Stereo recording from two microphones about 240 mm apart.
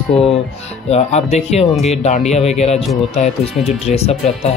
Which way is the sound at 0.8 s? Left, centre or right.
Left.